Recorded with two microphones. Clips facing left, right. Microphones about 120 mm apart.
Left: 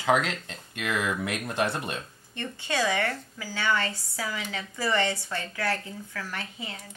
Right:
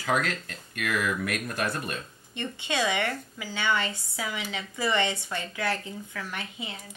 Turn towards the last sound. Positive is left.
turn(degrees=-20)  # may be behind; listen again after turning